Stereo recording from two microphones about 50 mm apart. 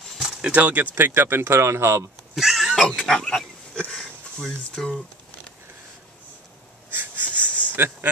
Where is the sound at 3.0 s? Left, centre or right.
Centre.